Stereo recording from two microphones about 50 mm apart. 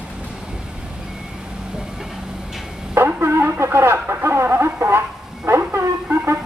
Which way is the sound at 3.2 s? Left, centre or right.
Right.